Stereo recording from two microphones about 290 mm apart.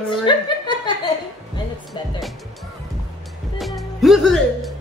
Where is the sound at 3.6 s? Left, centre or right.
Centre.